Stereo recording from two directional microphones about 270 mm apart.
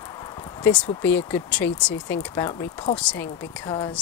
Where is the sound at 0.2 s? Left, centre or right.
Centre.